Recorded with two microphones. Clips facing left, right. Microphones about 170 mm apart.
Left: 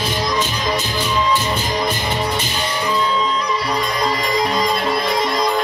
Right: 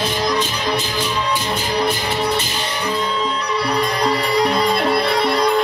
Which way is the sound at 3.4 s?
65° right (ahead or behind).